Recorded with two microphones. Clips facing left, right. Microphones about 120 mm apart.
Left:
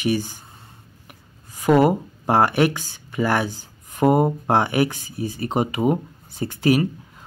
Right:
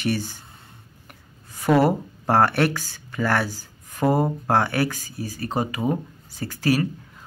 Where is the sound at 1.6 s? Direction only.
15° left (ahead or behind).